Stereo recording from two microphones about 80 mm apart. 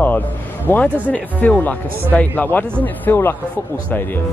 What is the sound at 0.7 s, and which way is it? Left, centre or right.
Speech, left.